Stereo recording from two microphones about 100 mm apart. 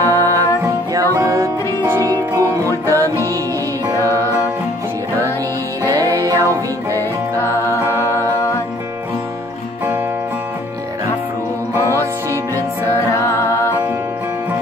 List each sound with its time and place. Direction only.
0.0 s music: 35° right (ahead or behind)
5.9 s music: 35° right (ahead or behind)
13.1 s music: 30° left (ahead or behind)